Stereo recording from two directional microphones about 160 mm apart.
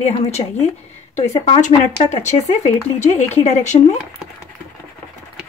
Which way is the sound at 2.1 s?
45° left (ahead or behind).